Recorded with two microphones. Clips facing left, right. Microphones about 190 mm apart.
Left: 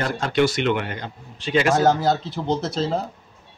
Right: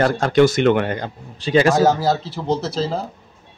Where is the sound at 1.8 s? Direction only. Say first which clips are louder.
Right 2 dB; 5° right (ahead or behind).